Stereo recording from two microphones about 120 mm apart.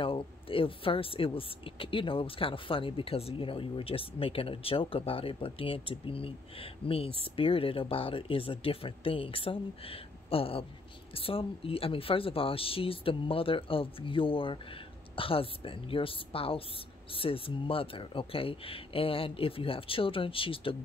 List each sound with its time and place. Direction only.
0.0 s speech: 50° left (ahead or behind)